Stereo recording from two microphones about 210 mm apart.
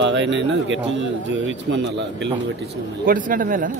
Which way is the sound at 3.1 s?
40° right (ahead or behind).